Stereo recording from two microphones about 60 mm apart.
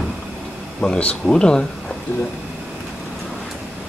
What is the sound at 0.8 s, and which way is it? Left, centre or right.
Speech, centre.